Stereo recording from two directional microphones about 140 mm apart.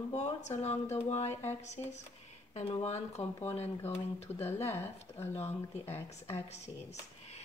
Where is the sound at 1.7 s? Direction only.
55° left (ahead or behind).